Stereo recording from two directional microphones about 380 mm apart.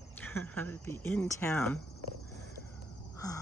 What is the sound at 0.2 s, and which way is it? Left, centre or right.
Speech, centre.